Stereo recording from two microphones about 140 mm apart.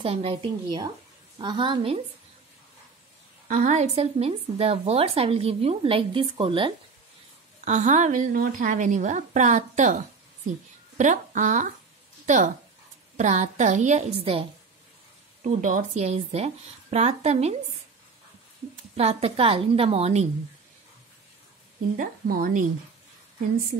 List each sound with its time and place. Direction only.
0.0 s a woman's voice: 45° right (ahead or behind)
3.4 s a woman's voice: 65° right (ahead or behind); by 6.7 s 40° right (ahead or behind)
7.6 s a woman's voice: 60° right (ahead or behind)
15.4 s a woman's voice: 65° right (ahead or behind)
16.0 s a woman's voice: 50° right (ahead or behind)
18.9 s a woman's voice: 45° right (ahead or behind)
21.9 s a woman's voice: 80° right